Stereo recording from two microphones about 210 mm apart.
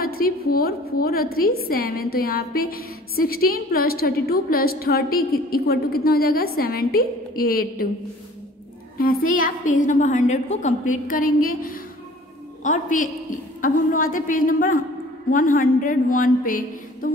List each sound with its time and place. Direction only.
0.0 s a woman's voice: 45° left (ahead or behind)
8.9 s a woman's voice: 45° left (ahead or behind)